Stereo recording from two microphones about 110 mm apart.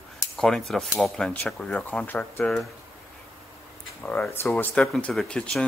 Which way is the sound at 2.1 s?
15° left (ahead or behind).